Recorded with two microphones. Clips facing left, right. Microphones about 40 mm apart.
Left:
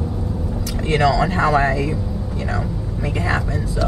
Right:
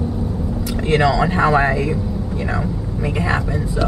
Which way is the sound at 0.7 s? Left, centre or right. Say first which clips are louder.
Right 1 dB; centre.